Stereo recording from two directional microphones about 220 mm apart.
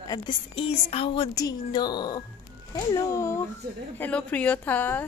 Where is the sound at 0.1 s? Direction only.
20° left (ahead or behind).